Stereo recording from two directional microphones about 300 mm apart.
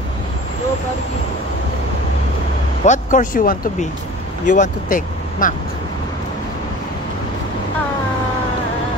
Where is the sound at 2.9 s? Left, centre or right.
Left.